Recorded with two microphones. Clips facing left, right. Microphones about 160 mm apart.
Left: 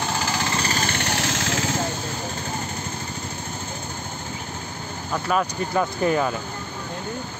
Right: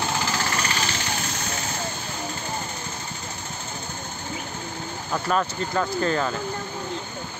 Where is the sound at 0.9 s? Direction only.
70° left (ahead or behind); by 1.6 s 90° left.